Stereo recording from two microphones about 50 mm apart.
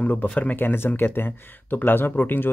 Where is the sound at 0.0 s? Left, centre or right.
Left.